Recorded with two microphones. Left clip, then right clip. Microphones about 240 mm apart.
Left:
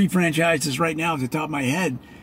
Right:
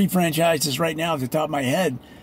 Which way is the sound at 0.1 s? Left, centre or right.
Centre.